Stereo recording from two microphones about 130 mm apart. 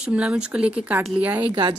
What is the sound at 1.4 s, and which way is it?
Speech, 40° right (ahead or behind).